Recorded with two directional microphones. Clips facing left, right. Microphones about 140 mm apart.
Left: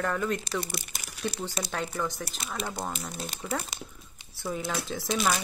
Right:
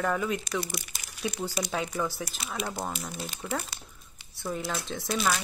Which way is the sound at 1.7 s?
5° right (ahead or behind).